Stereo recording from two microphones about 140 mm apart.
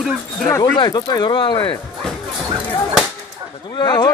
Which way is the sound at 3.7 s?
30° left (ahead or behind).